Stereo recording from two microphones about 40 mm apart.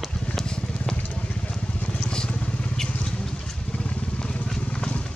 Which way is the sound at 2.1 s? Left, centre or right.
Left.